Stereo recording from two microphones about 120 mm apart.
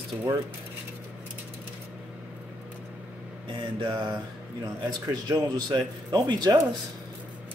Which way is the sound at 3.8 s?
35° right (ahead or behind).